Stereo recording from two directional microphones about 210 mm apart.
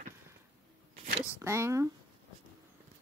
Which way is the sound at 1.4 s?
10° right (ahead or behind).